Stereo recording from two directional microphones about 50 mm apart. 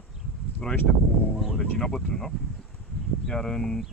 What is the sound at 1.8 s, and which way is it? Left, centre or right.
Speech, centre.